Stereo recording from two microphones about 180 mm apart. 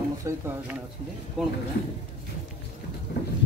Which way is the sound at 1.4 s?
5° right (ahead or behind).